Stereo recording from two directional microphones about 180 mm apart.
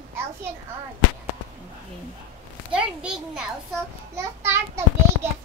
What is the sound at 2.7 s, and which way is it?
A child's voice, 5° right (ahead or behind).